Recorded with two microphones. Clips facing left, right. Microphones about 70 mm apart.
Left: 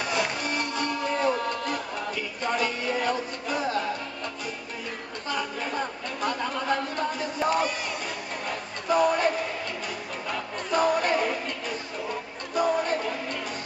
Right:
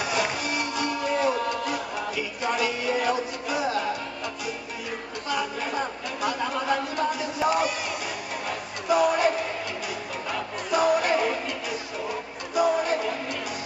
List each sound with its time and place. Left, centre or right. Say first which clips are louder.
0.0 s music: right 1 dB; centre
5.3 s a sound: right 2 dB; centre
10.3 s crowd: right 1 dB; centre
12.1 s music: right 1 dB; centre